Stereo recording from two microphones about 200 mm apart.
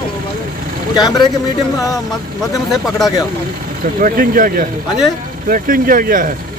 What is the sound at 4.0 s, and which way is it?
Speech, 45° right (ahead or behind).